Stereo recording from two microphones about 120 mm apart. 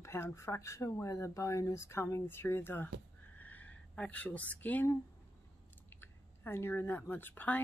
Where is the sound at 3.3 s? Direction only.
15° left (ahead or behind).